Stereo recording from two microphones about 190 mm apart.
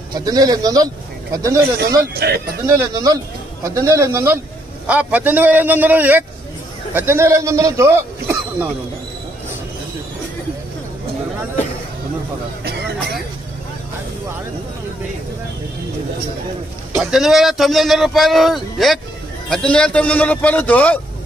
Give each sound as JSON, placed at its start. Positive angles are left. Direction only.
{"t": 0.1, "sound": "a man's voice", "side_deg": -20}
{"t": 2.1, "sound": "speech", "side_deg": -55}
{"t": 2.6, "sound": "a man's voice", "side_deg": -20}
{"t": 12.6, "sound": "a sound", "side_deg": -55}
{"t": 17.0, "sound": "a man's voice", "side_deg": 0}